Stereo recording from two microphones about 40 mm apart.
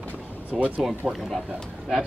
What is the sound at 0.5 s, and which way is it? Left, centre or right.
Speech, centre.